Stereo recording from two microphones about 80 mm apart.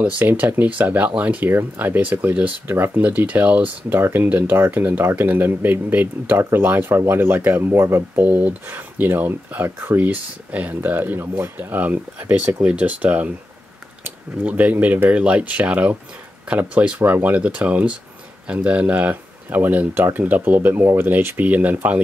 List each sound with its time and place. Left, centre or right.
0.0 s speech: right